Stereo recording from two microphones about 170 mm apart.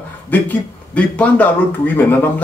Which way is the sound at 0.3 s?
10° left (ahead or behind).